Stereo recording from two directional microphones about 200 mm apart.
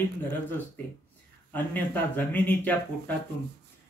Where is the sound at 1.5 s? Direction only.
10° left (ahead or behind).